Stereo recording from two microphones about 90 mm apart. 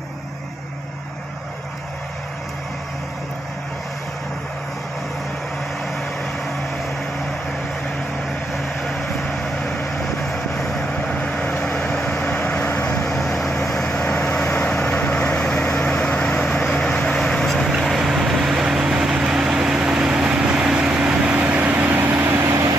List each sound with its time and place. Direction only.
10.3 s vehicle: 5° left (ahead or behind); by 13.1 s 20° left (ahead or behind)
13.1 s vehicle: 5° left (ahead or behind); by 22.5 s 25° right (ahead or behind)
22.5 s vehicle: 35° right (ahead or behind)